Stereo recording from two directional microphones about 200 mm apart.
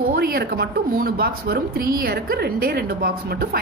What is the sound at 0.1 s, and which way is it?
Speech, 50° right (ahead or behind).